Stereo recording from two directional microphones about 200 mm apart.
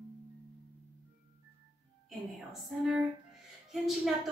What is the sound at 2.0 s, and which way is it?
A woman's voice, centre (ahead or behind).